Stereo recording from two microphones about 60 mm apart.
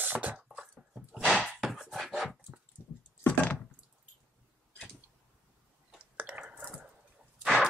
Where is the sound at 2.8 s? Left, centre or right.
Right.